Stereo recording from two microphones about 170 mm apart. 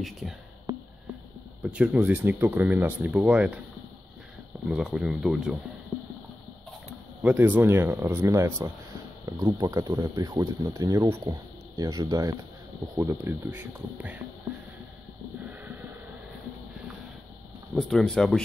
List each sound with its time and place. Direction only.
1.6 s speech: 5° right (ahead or behind)
4.6 s speech: 5° right (ahead or behind)
6.9 s speech: 10° right (ahead or behind)
15.4 s a sound: 10° right (ahead or behind)
17.7 s speech: centre (ahead or behind)